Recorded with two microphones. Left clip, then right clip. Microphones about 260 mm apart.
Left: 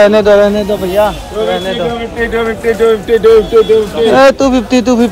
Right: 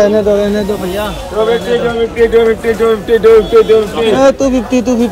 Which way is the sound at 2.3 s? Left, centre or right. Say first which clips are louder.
Right 3 dB; centre.